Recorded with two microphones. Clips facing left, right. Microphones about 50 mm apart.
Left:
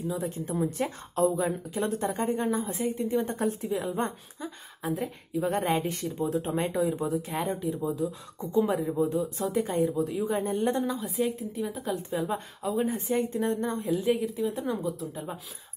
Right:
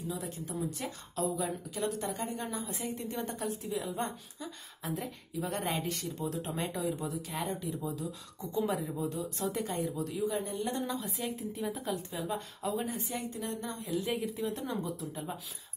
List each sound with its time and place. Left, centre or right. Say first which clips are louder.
0.1 s a woman's voice: left 6 dB; left
3.0 s speech: left 10 dB; centre
3.3 s a woman's voice: left 7 dB; left
4.8 s a woman's voice: left 6 dB; centre
8.0 s speech: left 9 dB; centre
8.4 s a woman's voice: left 7 dB; left
9.2 s a woman's voice: left 5 dB; centre
9.6 s a woman's voice: left 11 dB; left
9.9 s speech: left 7 dB; centre
10.2 s a woman's voice: left 5 dB; left
10.8 s a woman's voice: left 7 dB; centre
11.9 s a woman's voice: left 5 dB; left
14.0 s a woman's voice: left 7 dB; centre